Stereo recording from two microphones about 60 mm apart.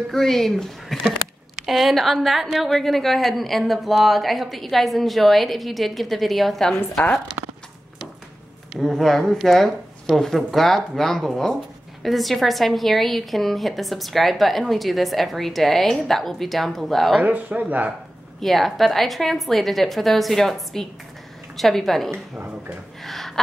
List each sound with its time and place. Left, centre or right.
0.1 s a woman's voice: centre
8.7 s a woman's voice: centre
17.2 s speech: right
18.4 s a woman's voice: centre
23.0 s gasp: centre